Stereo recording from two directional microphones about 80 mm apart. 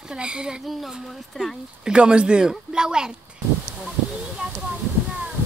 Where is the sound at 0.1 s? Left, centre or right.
Centre.